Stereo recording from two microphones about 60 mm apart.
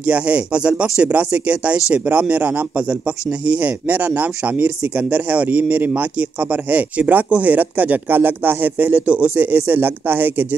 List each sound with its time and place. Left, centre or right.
0.0 s a man's voice: right